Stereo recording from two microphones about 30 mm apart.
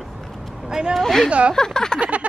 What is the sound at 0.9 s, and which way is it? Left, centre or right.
Speech, centre.